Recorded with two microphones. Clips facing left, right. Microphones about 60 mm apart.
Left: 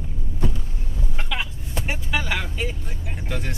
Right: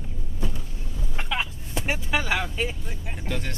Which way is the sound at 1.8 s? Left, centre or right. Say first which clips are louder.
Right 1 dB; right.